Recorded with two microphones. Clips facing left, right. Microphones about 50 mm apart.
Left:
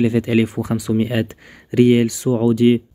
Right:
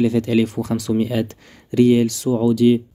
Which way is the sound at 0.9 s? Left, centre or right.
Left.